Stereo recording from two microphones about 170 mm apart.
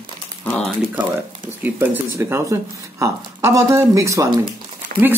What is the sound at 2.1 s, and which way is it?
A woman's voice, 15° right (ahead or behind).